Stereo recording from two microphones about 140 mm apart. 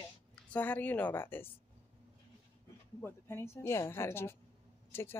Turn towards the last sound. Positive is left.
turn(degrees=15)  # may be behind; listen again after turning